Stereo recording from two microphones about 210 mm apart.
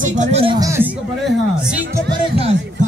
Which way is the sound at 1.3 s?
5° right (ahead or behind).